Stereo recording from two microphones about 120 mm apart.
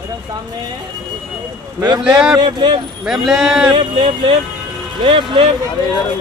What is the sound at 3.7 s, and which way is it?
Music, 45° right (ahead or behind).